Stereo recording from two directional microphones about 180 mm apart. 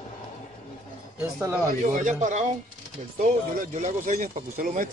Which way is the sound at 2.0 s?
40° right (ahead or behind).